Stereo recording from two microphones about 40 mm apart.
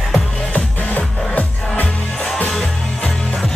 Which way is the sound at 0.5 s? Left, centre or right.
Left.